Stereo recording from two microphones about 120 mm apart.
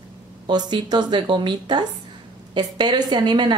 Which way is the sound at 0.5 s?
35° right (ahead or behind).